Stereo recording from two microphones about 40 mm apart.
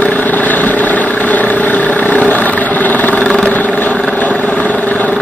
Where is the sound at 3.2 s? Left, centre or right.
Left.